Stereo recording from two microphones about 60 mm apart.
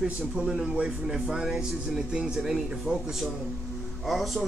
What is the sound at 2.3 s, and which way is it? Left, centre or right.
Speech, centre.